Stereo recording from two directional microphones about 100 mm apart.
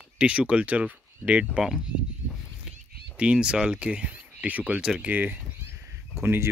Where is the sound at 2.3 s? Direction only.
10° right (ahead or behind).